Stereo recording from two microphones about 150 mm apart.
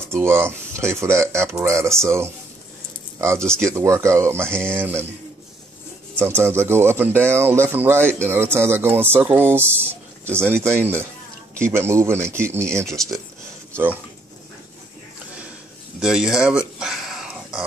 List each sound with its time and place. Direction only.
0.1 s speech: 15° right (ahead or behind)
6.1 s speech: 15° right (ahead or behind)
16.0 s a sound: 5° right (ahead or behind)